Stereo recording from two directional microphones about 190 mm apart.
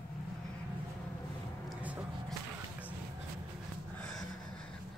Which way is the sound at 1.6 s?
5° right (ahead or behind).